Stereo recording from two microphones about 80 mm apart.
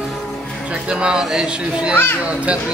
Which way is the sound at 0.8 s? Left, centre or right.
Centre.